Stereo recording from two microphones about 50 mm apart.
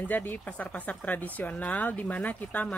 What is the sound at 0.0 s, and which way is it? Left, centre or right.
Speech, left.